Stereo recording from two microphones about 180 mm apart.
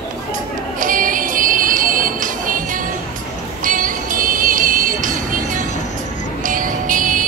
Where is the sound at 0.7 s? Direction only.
50° right (ahead or behind).